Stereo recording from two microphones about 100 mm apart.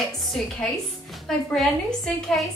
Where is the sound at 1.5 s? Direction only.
5° left (ahead or behind).